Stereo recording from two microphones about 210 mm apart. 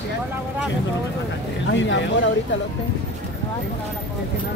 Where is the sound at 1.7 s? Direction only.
60° left (ahead or behind).